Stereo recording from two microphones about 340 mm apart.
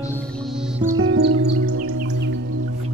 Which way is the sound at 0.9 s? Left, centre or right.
Right.